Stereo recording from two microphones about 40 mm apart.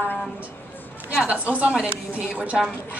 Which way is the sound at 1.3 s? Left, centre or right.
Right.